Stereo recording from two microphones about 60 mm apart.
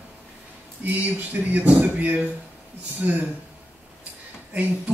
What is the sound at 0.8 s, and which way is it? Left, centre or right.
Speech, right.